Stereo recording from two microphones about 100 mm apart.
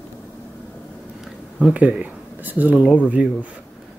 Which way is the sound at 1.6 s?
10° right (ahead or behind).